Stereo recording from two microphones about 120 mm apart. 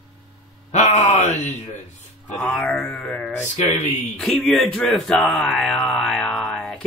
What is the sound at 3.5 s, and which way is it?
Speech, 70° left (ahead or behind).